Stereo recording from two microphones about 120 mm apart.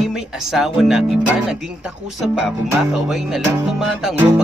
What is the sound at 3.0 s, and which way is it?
Music, 5° right (ahead or behind).